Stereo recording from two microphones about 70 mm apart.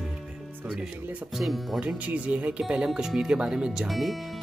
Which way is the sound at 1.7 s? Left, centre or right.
Centre.